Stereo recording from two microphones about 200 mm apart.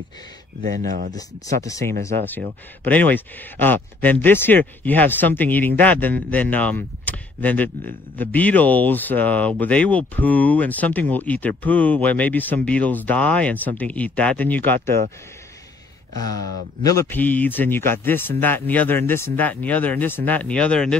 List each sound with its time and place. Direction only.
0.6 s speech: 45° right (ahead or behind)
1.1 s speech: 15° left (ahead or behind)
16.8 s speech: 15° left (ahead or behind)